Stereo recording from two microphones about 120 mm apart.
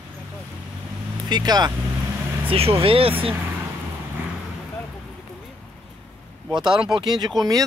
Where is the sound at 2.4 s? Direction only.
50° right (ahead or behind).